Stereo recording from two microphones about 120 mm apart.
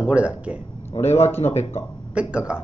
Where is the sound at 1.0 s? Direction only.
65° left (ahead or behind).